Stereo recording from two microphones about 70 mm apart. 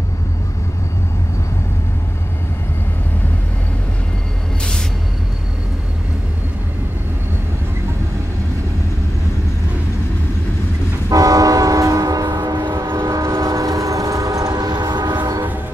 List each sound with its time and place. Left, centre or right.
11.1 s train: right
13.2 s train: right